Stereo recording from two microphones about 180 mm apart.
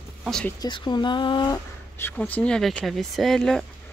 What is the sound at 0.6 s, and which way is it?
Speech, 25° left (ahead or behind).